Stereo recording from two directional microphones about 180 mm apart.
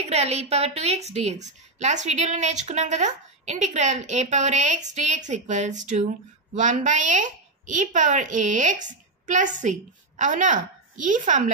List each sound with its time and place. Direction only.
0.0 s a woman's voice: 35° right (ahead or behind)